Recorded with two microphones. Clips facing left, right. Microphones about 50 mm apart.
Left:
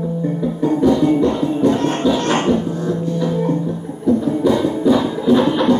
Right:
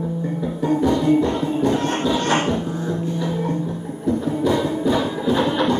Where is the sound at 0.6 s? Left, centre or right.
Centre.